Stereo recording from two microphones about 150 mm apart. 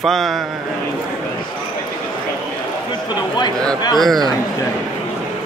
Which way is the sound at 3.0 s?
30° left (ahead or behind).